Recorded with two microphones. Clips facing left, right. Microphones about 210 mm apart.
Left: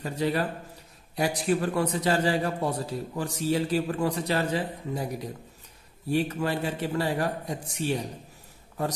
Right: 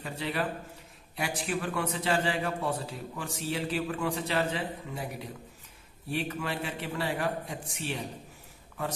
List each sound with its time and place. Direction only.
0.0 s a man's voice: 40° left (ahead or behind)